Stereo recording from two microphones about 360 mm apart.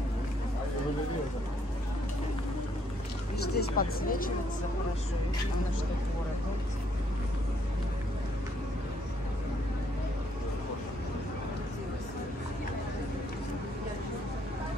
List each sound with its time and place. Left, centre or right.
3.5 s speech: left